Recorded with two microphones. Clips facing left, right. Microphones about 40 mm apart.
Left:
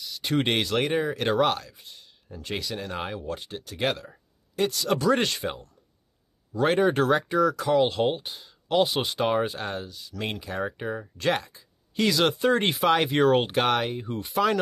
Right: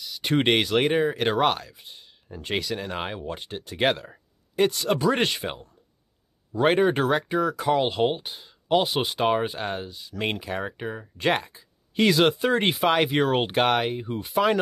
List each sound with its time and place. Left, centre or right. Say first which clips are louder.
0.2 s speech: right 3 dB; right
1.9 s a sound: right 2 dB; right
2.6 s speech: right 2 dB; centre
3.1 s speech: even; right
4.8 s speech: even; right
7.0 s speech: left 1 dB; centre
10.4 s speech: even; centre
11.1 s speech: right 3 dB; right
12.4 s speech: even; centre